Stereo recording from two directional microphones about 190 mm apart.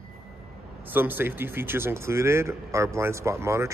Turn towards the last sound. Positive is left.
turn(degrees=-15)  # may be behind; listen again after turning